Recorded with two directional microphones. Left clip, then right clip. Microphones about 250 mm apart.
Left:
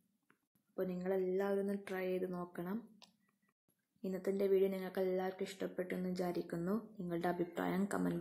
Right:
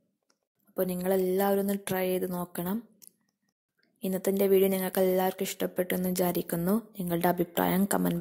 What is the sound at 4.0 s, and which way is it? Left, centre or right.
Speech, right.